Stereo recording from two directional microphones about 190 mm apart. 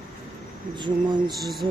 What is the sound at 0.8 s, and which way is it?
Speech, 25° right (ahead or behind).